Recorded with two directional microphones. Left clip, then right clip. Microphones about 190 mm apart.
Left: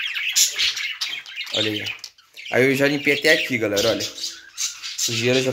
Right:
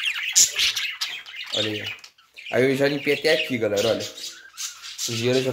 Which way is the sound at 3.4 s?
Centre (ahead or behind).